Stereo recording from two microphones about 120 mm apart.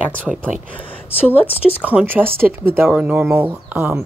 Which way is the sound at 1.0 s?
15° left (ahead or behind).